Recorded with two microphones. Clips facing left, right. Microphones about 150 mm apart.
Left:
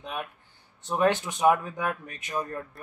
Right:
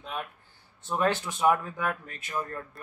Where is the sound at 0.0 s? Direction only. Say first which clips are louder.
Left 1 dB; 15° left (ahead or behind).